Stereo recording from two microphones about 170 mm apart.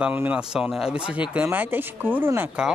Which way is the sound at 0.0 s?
10° right (ahead or behind).